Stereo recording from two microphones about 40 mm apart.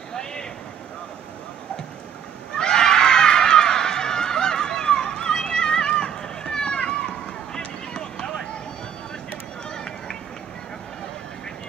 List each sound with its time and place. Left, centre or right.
0.1 s a sound: centre
2.5 s run: centre
9.7 s run: centre